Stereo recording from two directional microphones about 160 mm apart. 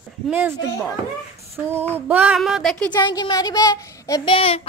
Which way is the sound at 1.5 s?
15° right (ahead or behind).